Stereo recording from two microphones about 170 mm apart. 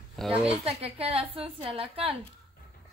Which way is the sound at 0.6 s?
35° right (ahead or behind).